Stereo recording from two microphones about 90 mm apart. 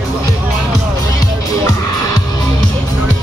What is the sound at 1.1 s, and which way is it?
Music, 45° left (ahead or behind).